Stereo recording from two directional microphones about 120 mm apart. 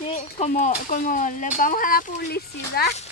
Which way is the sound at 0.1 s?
80° left.